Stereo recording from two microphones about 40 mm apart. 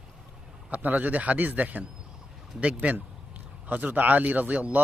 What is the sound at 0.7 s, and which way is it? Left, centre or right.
Speech, right.